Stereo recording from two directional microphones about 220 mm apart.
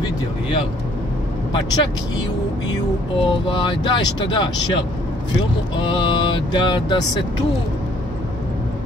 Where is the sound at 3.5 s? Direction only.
20° left (ahead or behind).